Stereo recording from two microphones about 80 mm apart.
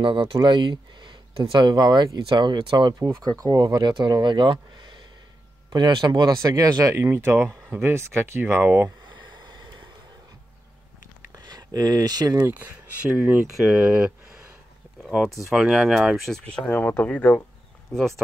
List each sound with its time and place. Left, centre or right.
0.0 s speech: right
3.3 s speech: right
5.7 s speech: right
6.4 s speech: right
8.6 s speech: right
9.0 s a sound: right
11.3 s speech: right
12.4 s speech: right
13.5 s speech: centre
13.8 s speech: right
15.2 s speech: centre
16.3 s speech: centre
16.6 s speech: left
17.9 s speech: centre